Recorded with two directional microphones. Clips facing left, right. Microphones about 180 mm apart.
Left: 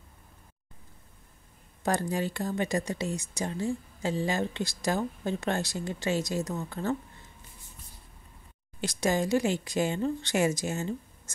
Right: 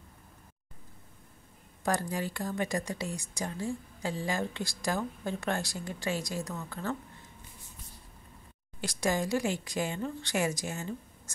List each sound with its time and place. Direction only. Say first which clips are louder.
1.8 s speech: left 3 dB; 25° left (ahead or behind)
8.8 s speech: left 3 dB; 20° left (ahead or behind)